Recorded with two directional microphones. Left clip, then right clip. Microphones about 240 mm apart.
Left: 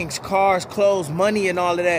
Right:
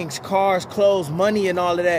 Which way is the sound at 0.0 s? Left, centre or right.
Centre.